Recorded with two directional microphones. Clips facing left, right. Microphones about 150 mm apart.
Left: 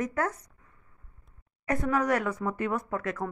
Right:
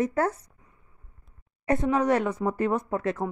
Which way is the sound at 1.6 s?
25° right (ahead or behind).